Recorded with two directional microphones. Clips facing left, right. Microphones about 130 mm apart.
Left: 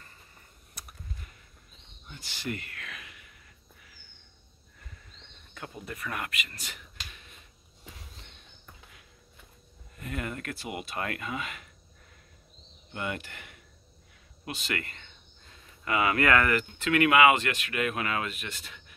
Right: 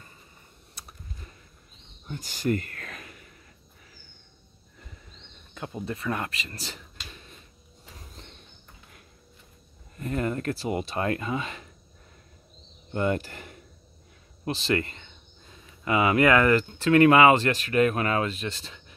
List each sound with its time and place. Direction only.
0.7 s computer keyboard: 25° right (ahead or behind)
2.0 s a sound: 45° right (ahead or behind)
5.5 s speech: 25° right (ahead or behind)
9.9 s speech: 35° right (ahead or behind)
12.9 s speech: 35° right (ahead or behind)